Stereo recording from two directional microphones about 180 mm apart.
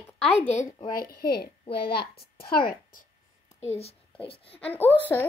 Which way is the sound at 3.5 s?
35° left (ahead or behind).